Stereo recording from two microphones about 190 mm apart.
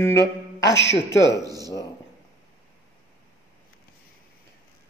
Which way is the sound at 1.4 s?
20° right (ahead or behind).